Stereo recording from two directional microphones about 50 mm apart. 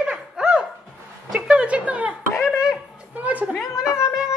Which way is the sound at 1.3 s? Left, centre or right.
Right.